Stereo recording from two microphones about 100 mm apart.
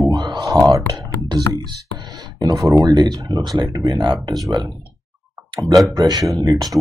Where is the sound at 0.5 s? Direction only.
35° right (ahead or behind).